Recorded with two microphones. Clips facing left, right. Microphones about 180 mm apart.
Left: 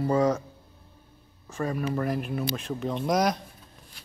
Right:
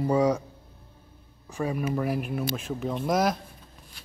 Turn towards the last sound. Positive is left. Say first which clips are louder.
# even
turn(degrees=-5)  # may be behind; listen again after turning